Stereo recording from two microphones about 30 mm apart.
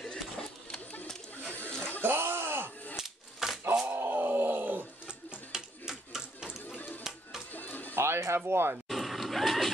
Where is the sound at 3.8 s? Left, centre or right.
Right.